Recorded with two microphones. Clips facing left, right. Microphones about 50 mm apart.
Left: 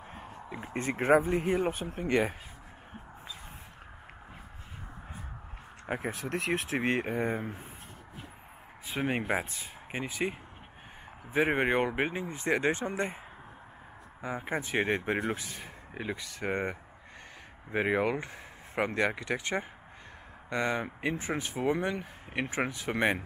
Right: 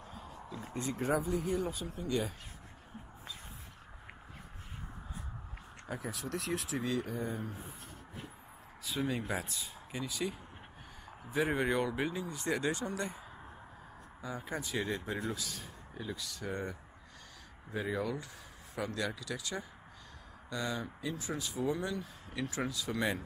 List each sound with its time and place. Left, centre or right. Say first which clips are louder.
0.1 s a sound: left 3 dB; left
0.7 s speech: left 8 dB; left
5.9 s speech: left 6 dB; left
8.8 s speech: left 4 dB; left
14.2 s speech: left 6 dB; left
15.6 s speech: left 5 dB; left
17.9 s speech: left 7 dB; left